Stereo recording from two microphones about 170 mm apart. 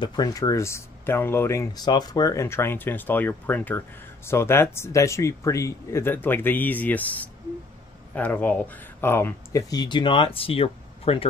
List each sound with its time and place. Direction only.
0.0 s speech: 25° left (ahead or behind)